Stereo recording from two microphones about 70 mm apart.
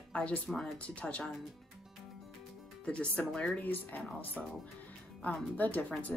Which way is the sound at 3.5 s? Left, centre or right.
Left.